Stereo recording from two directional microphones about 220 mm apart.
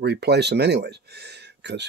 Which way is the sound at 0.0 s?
50° right (ahead or behind).